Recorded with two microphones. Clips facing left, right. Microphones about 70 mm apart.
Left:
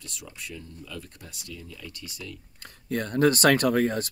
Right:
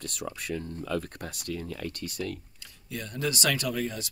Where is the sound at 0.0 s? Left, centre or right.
Right.